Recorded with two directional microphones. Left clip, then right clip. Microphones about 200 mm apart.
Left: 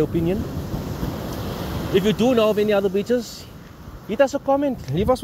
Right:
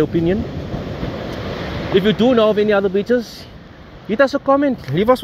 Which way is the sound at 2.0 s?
Centre (ahead or behind).